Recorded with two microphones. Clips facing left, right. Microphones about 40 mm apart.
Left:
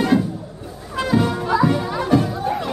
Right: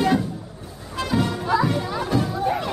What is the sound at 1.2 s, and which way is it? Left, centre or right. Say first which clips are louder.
Music: left 3 dB; centre.